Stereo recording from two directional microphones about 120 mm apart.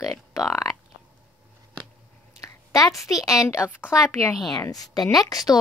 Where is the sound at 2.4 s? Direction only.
25° left (ahead or behind).